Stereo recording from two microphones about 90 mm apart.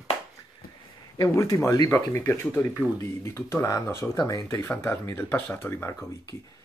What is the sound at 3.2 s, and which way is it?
Speech, 30° left (ahead or behind).